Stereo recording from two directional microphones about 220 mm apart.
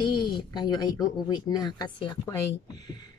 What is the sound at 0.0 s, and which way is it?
Speech, 20° left (ahead or behind).